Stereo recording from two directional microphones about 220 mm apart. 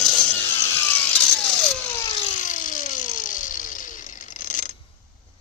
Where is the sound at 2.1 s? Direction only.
30° left (ahead or behind).